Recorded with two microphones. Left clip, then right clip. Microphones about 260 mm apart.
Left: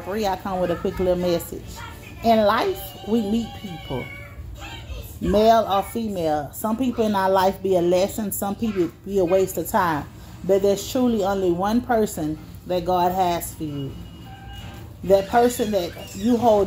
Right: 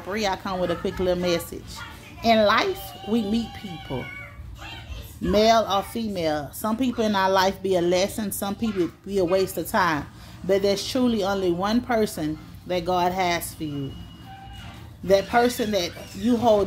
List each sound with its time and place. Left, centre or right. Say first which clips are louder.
0.1 s speech: left 2 dB; centre
5.3 s speech: left 2 dB; centre
15.0 s speech: left 2 dB; centre